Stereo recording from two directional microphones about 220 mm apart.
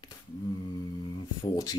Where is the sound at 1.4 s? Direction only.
15° left (ahead or behind).